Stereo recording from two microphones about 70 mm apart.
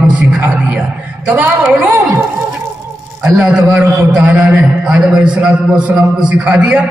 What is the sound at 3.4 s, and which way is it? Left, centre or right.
A man's voice, centre.